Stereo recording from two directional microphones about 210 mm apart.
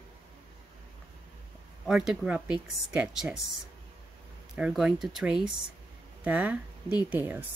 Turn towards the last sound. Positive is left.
turn(degrees=-10)  # may be behind; listen again after turning